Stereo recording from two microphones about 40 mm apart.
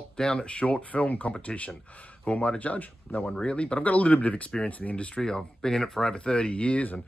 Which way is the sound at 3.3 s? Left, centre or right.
Left.